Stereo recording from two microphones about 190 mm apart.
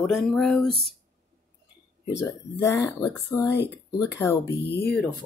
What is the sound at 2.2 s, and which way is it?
Speech, 15° left (ahead or behind).